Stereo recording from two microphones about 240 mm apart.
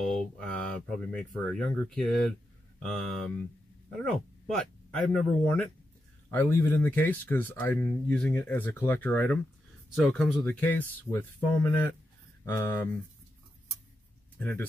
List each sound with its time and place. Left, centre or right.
0.0 s speech: centre
14.4 s speech: centre